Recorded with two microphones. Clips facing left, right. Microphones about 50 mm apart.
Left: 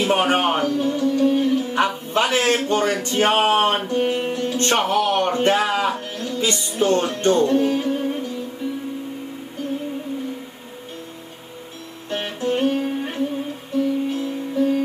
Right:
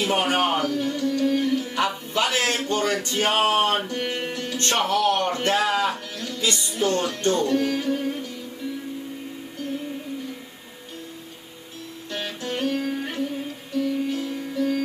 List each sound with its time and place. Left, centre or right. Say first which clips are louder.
0.0 s speech: left 4 dB; left
12.1 s music: left 7 dB; left